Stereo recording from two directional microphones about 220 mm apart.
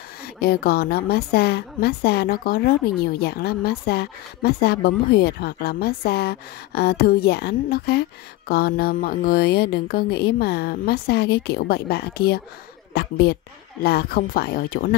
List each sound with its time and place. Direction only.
0.4 s a woman's voice: 45° left (ahead or behind)